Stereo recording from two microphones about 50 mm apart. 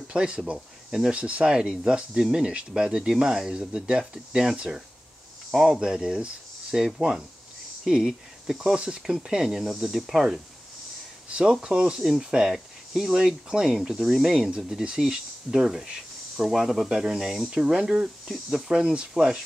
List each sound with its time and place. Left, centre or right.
0.1 s speech: centre
6.8 s speech: centre
11.2 s speech: centre